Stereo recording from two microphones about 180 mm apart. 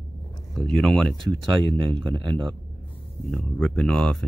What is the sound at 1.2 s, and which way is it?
Speech, 25° right (ahead or behind).